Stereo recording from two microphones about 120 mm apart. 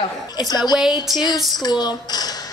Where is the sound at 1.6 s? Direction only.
35° left (ahead or behind).